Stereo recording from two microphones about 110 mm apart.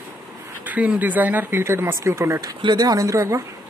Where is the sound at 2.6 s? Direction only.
40° right (ahead or behind).